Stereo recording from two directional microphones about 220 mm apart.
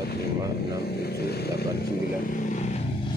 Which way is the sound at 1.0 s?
45° left (ahead or behind).